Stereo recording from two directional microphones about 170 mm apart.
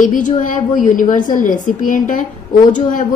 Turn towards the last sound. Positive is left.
turn(degrees=50)  # may be behind; listen again after turning